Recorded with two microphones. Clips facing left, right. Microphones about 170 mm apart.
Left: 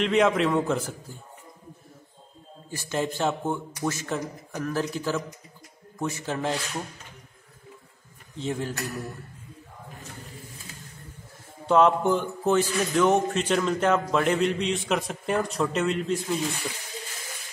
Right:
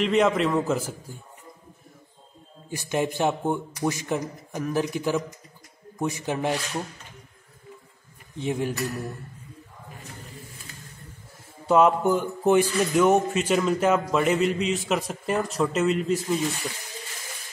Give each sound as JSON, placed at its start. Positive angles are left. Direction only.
{"t": 0.0, "sound": "speech", "side_deg": 0}
{"t": 2.7, "sound": "speech", "side_deg": -15}
{"t": 8.4, "sound": "speech", "side_deg": -15}
{"t": 11.6, "sound": "speech", "side_deg": -5}